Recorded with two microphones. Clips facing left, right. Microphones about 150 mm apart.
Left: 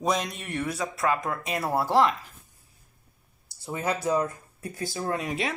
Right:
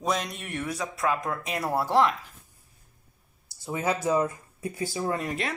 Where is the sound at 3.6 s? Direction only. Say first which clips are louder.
Right 1 dB; 5° right (ahead or behind).